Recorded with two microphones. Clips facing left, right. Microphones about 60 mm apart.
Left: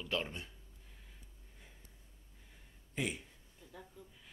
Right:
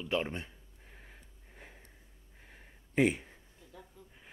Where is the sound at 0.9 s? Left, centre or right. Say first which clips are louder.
Right 9 dB; right.